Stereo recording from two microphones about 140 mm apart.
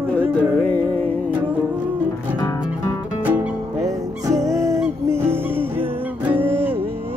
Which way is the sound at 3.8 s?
25° right (ahead or behind).